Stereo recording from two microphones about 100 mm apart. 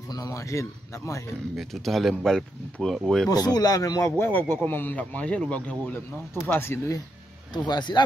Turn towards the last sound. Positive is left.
turn(degrees=45)  # may be behind; listen again after turning